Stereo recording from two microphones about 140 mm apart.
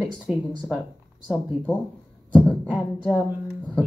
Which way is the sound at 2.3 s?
10° left (ahead or behind).